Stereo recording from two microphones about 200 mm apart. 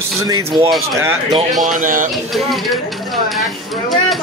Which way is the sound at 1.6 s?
40° right (ahead or behind).